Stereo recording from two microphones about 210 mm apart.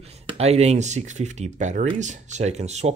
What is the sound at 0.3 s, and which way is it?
Speech, 30° right (ahead or behind).